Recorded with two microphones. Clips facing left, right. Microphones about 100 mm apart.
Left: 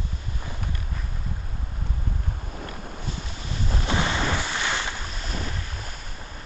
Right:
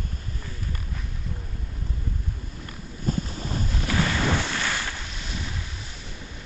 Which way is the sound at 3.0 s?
45° right (ahead or behind).